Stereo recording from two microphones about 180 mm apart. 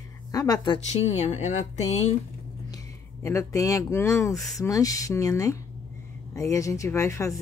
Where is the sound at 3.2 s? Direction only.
15° left (ahead or behind).